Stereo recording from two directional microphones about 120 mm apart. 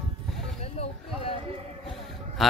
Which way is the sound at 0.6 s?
55° left (ahead or behind).